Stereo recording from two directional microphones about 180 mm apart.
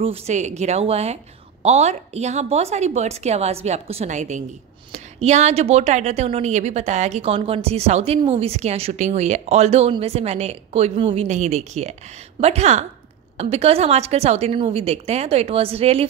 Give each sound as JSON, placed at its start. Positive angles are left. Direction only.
{"t": 0.0, "sound": "a woman's voice", "side_deg": -35}